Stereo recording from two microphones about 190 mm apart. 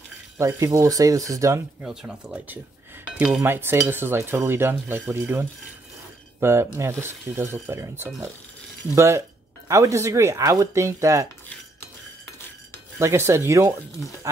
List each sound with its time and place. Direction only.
0.4 s cutlery: 15° right (ahead or behind)
1.8 s speech: 5° right (ahead or behind)
3.2 s cutlery: 5° right (ahead or behind)
13.0 s cutlery: 15° right (ahead or behind)